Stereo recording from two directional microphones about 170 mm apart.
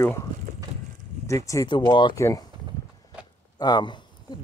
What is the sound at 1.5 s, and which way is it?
Speech, 25° left (ahead or behind).